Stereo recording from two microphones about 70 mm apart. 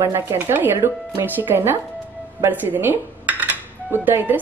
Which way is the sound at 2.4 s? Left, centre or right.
Right.